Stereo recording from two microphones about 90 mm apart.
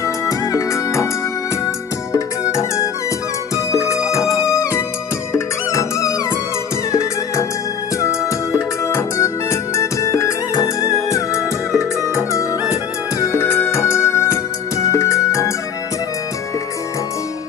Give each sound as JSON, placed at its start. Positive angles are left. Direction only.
{"t": 0.0, "sound": "music", "side_deg": 40}
{"t": 2.1, "sound": "music", "side_deg": 35}
{"t": 12.0, "sound": "music", "side_deg": -30}
{"t": 13.2, "sound": "music", "side_deg": 30}